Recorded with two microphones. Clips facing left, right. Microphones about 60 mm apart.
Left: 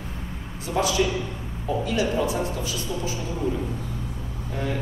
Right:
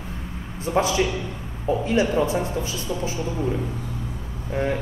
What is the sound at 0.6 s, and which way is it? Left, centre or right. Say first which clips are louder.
Speech: right 2 dB; right.